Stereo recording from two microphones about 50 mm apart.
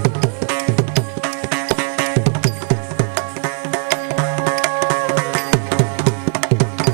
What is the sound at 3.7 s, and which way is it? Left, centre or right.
Music, centre.